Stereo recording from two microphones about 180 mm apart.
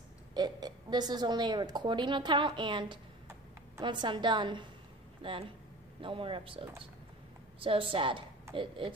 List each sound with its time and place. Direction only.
0.3 s a woman's voice: 20° right (ahead or behind)